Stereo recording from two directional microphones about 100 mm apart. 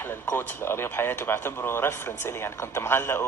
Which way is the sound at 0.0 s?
20° left (ahead or behind).